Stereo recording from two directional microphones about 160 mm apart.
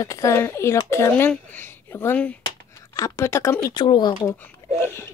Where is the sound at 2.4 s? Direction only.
20° left (ahead or behind).